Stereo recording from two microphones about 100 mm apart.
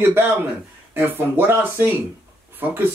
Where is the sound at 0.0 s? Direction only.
20° right (ahead or behind).